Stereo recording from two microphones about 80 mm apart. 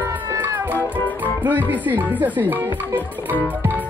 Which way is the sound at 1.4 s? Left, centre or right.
Right.